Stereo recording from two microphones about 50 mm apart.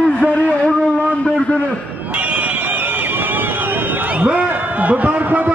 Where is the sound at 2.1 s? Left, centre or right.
Right.